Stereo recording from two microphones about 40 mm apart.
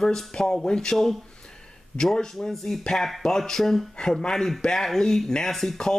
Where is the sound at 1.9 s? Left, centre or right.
Centre.